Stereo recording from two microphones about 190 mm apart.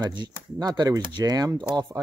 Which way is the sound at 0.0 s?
25° right (ahead or behind).